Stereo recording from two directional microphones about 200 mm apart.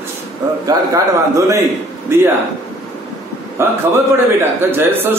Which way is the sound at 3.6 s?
10° right (ahead or behind).